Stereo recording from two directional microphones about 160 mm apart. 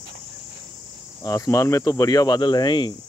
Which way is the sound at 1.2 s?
20° left (ahead or behind).